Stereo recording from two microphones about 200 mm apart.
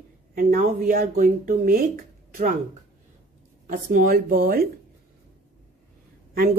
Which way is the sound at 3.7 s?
45° right (ahead or behind).